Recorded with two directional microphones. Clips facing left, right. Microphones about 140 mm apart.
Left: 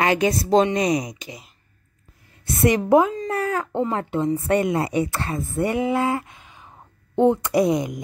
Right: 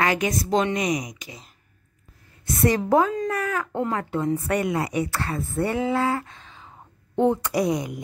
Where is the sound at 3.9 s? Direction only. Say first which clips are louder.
Left 2 dB; 25° left (ahead or behind).